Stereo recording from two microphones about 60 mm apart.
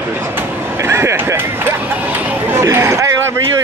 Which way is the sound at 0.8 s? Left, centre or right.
Right.